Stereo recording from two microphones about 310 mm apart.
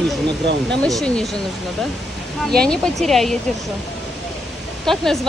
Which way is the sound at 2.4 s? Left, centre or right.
Centre.